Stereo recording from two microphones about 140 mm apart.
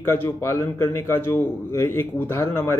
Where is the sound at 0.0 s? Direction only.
20° left (ahead or behind).